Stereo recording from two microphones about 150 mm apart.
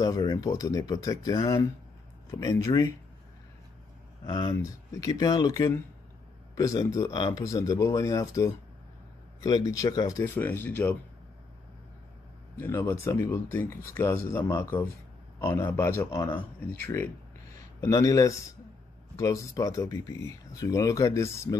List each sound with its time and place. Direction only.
0.0 s speech: 25° left (ahead or behind)
4.3 s speech: 25° left (ahead or behind)
12.5 s speech: 15° left (ahead or behind)